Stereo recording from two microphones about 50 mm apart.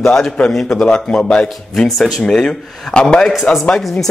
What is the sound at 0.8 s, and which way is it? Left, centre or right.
Speech, centre.